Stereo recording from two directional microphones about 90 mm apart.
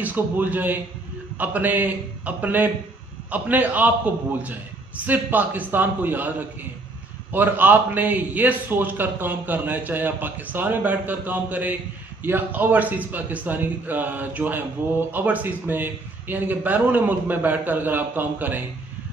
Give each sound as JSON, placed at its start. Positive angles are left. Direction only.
{"t": 0.0, "sound": "a man's voice", "side_deg": -20}
{"t": 7.3, "sound": "a man's voice", "side_deg": -20}